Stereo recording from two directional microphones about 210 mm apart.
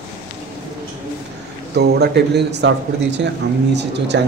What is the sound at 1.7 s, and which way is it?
A man's voice, 50° right (ahead or behind).